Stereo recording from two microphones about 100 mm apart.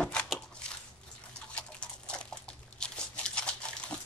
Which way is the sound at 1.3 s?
10° left (ahead or behind).